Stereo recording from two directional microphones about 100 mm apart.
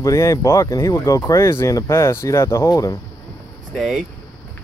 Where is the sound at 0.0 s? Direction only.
30° left (ahead or behind).